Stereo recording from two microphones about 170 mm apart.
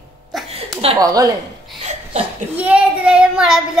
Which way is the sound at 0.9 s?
20° right (ahead or behind).